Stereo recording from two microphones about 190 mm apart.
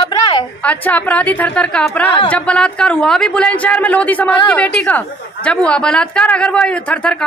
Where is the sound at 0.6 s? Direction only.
5° left (ahead or behind).